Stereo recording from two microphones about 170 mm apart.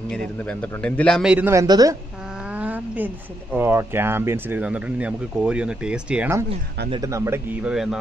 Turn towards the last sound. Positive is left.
turn(degrees=-5)  # may be behind; listen again after turning